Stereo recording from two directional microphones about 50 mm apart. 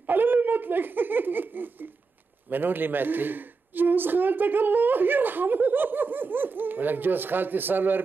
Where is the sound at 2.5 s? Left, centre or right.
Right.